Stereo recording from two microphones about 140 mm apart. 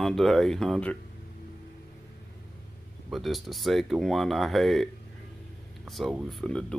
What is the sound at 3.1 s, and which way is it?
Speech, centre (ahead or behind).